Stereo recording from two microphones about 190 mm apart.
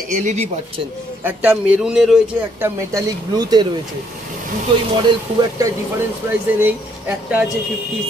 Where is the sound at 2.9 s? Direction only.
20° right (ahead or behind).